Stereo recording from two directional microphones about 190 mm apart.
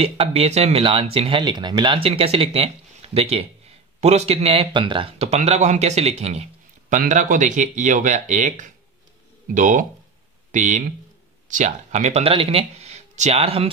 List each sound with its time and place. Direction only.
0.0 s speech: 30° right (ahead or behind)